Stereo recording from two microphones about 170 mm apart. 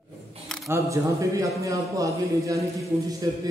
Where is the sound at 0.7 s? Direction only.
20° right (ahead or behind).